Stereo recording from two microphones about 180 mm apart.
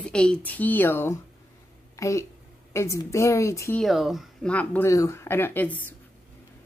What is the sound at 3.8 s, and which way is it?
A woman's voice, centre (ahead or behind).